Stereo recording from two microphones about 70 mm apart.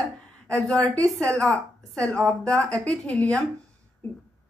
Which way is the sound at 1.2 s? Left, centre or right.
Centre.